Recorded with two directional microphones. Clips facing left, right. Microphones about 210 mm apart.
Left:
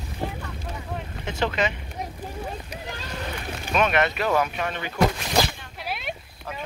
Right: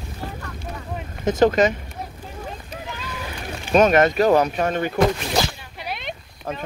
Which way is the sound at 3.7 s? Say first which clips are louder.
Right 7 dB; 40° right (ahead or behind).